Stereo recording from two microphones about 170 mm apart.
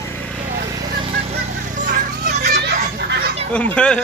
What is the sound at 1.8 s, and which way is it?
Children playing, 50° right (ahead or behind).